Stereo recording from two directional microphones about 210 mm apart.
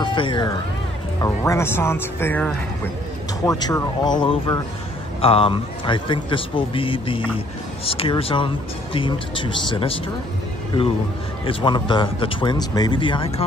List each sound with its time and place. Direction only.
0.0 s speech: 20° left (ahead or behind)
11.4 s speech: 20° left (ahead or behind)